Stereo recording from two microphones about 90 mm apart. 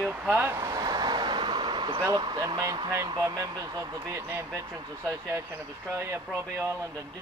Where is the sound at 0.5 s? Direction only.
35° right (ahead or behind).